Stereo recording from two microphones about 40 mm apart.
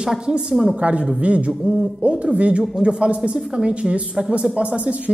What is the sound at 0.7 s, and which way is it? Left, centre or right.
Speech, right.